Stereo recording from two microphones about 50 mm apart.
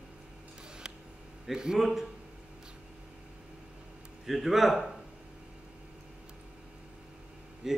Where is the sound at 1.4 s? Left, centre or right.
Centre.